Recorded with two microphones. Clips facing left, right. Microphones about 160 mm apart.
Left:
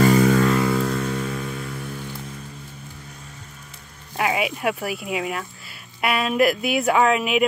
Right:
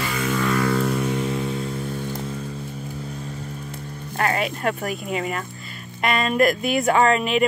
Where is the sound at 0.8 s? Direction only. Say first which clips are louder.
Right 2 dB; 15° right (ahead or behind).